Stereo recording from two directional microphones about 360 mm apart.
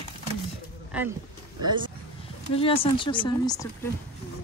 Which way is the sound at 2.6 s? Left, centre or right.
Centre.